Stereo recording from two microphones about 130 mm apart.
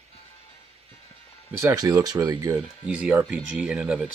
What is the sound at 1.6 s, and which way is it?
Speech, 25° right (ahead or behind).